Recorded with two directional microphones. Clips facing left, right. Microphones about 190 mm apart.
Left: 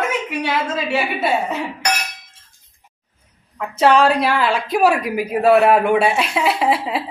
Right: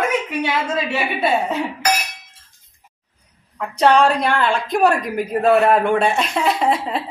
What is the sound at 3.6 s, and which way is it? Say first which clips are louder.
A woman's voice: even; 5° left (ahead or behind).